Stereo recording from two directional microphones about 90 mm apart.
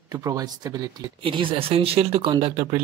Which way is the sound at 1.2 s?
75° right (ahead or behind).